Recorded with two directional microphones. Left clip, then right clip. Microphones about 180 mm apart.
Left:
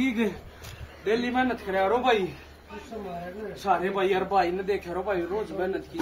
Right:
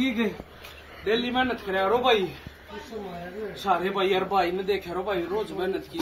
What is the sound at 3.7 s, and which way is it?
A man's voice, centre (ahead or behind).